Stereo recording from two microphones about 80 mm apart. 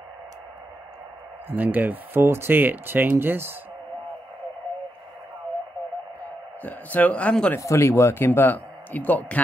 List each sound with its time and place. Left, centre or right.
1.5 s speech: right
6.6 s speech: centre
7.5 s speech: left